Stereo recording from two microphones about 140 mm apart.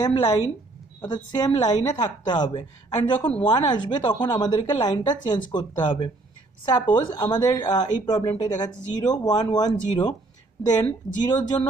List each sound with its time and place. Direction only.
0.0 s speech: 30° left (ahead or behind)
11.2 s speech: 30° left (ahead or behind)